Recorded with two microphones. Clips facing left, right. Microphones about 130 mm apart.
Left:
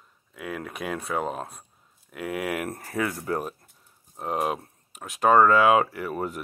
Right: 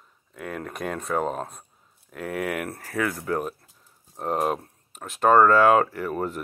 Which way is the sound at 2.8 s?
30° left (ahead or behind).